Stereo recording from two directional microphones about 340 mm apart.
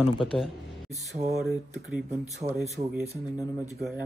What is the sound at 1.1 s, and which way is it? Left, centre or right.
Speech, centre.